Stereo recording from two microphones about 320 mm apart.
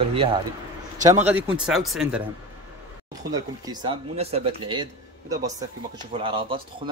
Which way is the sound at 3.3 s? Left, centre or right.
Centre.